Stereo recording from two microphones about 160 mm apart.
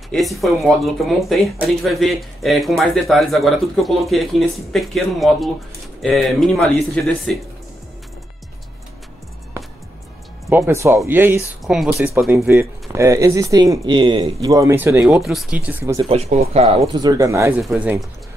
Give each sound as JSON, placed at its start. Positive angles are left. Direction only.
{"t": 0.1, "sound": "speech", "side_deg": 0}
{"t": 10.5, "sound": "speech", "side_deg": -15}
{"t": 11.6, "sound": "speech", "side_deg": -5}
{"t": 12.9, "sound": "speech", "side_deg": -20}
{"t": 16.1, "sound": "speech", "side_deg": -40}
{"t": 17.0, "sound": "speech", "side_deg": -20}
{"t": 17.6, "sound": "speech", "side_deg": 0}